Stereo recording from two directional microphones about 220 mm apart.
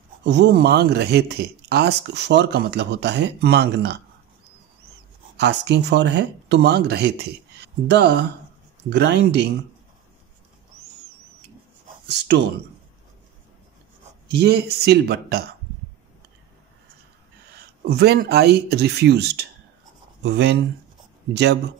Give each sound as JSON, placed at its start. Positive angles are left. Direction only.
{"t": 0.2, "sound": "speech", "side_deg": -50}
{"t": 5.4, "sound": "speech", "side_deg": -50}
{"t": 12.1, "sound": "speech", "side_deg": -50}
{"t": 14.2, "sound": "speech", "side_deg": -50}
{"t": 17.8, "sound": "speech", "side_deg": -50}